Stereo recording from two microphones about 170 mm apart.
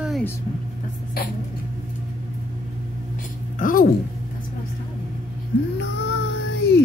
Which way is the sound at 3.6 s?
55° left (ahead or behind).